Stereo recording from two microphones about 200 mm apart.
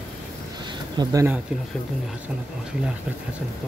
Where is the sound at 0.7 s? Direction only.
20° right (ahead or behind).